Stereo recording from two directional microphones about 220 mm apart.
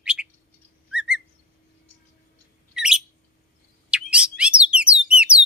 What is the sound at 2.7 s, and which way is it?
Bird, 5° right (ahead or behind).